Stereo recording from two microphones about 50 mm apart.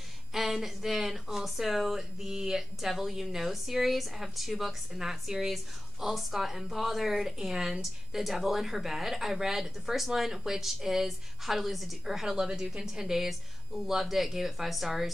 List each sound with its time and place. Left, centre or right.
0.3 s speech: centre